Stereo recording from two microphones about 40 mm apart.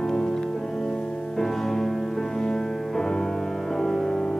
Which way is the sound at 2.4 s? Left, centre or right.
Centre.